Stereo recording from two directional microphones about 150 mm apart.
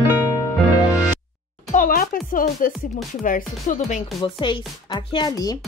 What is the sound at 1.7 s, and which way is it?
Music, 65° left (ahead or behind).